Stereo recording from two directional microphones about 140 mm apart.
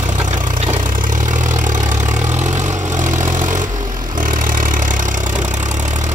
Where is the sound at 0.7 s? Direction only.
70° right (ahead or behind).